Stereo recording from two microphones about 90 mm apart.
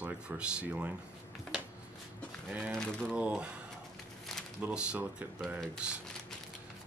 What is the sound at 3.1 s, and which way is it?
Speech, 10° right (ahead or behind).